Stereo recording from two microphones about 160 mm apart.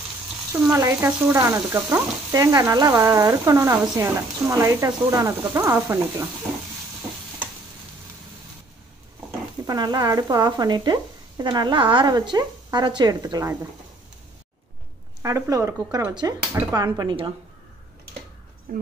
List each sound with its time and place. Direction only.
0.5 s frying: 15° right (ahead or behind)
9.7 s speech: 25° right (ahead or behind)
15.2 s speech: 20° right (ahead or behind)